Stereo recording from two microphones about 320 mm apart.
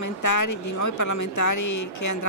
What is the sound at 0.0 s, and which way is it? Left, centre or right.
A woman's voice, left.